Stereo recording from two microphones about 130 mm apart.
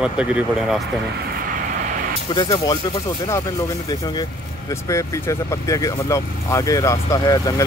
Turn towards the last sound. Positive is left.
turn(degrees=30)  # may be behind; listen again after turning